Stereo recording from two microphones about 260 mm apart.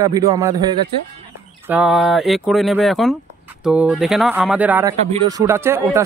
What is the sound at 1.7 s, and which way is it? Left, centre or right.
A man's voice, centre.